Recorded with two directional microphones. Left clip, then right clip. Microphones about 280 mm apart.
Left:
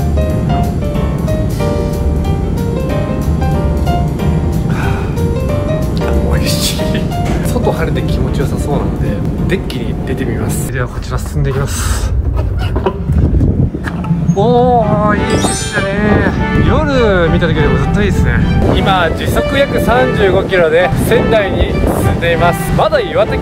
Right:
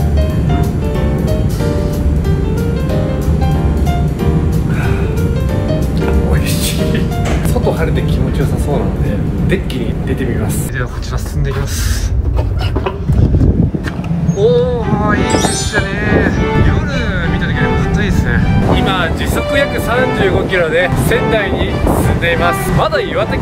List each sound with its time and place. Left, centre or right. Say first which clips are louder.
14.4 s music: left 3 dB; centre
17.4 s speech: left 3 dB; centre
18.8 s speech: left 3 dB; centre